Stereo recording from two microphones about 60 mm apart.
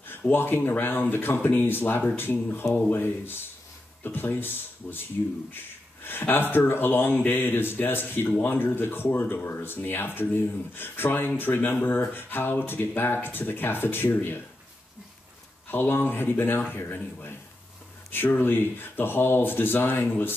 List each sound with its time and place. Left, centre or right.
0.3 s speech: left
6.0 s speech: left
15.7 s speech: left